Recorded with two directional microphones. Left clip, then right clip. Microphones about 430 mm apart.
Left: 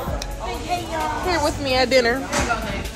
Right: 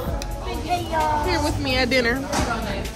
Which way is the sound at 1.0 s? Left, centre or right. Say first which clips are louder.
Even; centre.